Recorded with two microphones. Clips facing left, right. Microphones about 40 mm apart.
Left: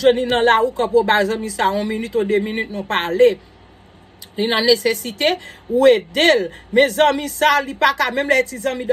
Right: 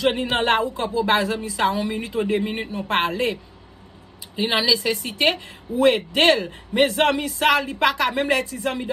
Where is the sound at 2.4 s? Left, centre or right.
Centre.